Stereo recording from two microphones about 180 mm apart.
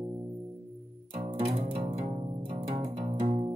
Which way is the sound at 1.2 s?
35° right (ahead or behind).